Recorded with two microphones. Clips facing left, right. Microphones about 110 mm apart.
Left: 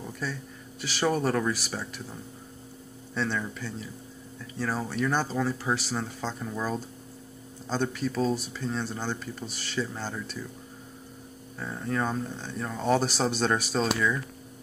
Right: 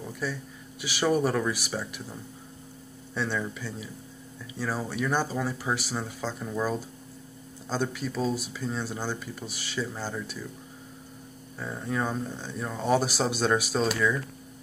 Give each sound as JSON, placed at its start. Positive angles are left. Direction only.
{"t": 0.2, "sound": "speech", "side_deg": -10}
{"t": 3.2, "sound": "speech", "side_deg": -5}
{"t": 11.5, "sound": "speech", "side_deg": -5}